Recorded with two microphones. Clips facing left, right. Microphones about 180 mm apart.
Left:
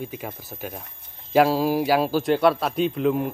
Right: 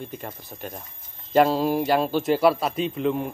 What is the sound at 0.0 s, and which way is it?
A man's voice, 5° left (ahead or behind).